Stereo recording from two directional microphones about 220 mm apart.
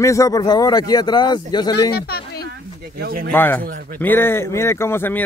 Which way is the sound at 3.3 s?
10° left (ahead or behind).